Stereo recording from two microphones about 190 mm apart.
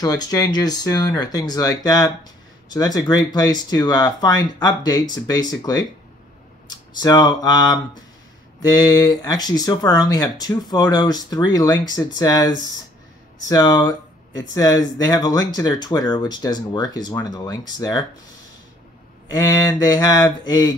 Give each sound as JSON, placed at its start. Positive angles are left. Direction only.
{"t": 0.0, "sound": "speech", "side_deg": 20}
{"t": 6.9, "sound": "speech", "side_deg": 20}
{"t": 19.3, "sound": "speech", "side_deg": 20}